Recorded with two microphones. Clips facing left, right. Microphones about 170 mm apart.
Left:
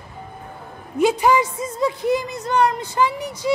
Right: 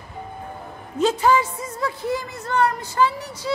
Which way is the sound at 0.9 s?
15° left (ahead or behind).